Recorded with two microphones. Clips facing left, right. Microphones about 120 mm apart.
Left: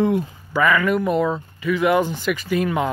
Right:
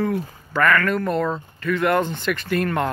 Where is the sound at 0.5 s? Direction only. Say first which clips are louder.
Left 1 dB; 10° left (ahead or behind).